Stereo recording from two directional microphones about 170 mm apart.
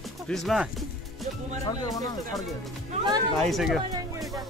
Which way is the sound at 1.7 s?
20° left (ahead or behind).